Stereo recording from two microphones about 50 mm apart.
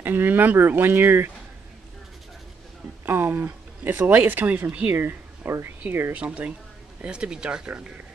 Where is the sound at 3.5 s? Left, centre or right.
Right.